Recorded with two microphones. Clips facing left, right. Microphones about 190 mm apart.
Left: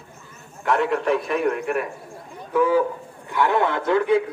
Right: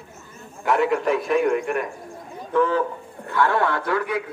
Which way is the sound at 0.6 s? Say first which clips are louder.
Right 1 dB; centre (ahead or behind).